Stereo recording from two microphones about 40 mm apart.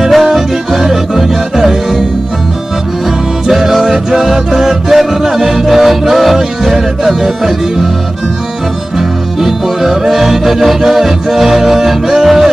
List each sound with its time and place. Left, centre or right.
0.1 s music: centre
3.4 s music: centre
8.9 s music: centre